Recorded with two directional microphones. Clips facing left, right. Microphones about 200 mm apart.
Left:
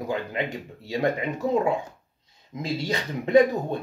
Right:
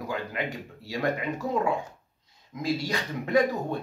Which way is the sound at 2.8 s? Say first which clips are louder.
Left 3 dB; 20° left (ahead or behind).